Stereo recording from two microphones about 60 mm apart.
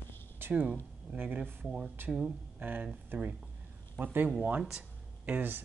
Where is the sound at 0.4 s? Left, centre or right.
Right.